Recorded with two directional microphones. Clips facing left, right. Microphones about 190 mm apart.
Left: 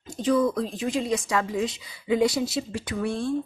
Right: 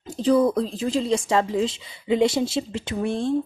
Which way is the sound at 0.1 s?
35° right (ahead or behind).